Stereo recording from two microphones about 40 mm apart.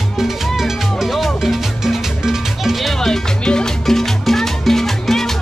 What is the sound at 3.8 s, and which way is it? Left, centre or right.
Music, centre.